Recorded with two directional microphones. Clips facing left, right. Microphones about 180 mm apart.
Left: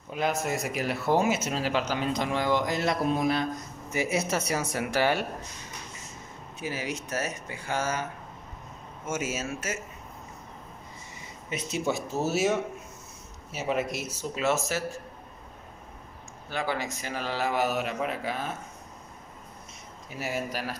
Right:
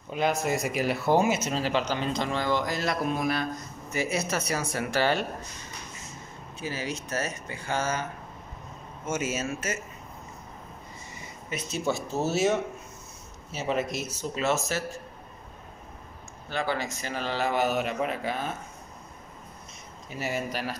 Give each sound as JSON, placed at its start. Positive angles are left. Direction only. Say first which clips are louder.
{"t": 0.1, "sound": "speech", "louder": "right 2 dB", "side_deg": 0}
{"t": 6.6, "sound": "speech", "louder": "even", "side_deg": 15}
{"t": 9.1, "sound": "speech", "louder": "right 2 dB", "side_deg": 5}
{"t": 11.9, "sound": "speech", "louder": "right 1 dB", "side_deg": 10}
{"t": 16.4, "sound": "speech", "louder": "right 1 dB", "side_deg": 10}
{"t": 20.1, "sound": "speech", "louder": "right 1 dB", "side_deg": 5}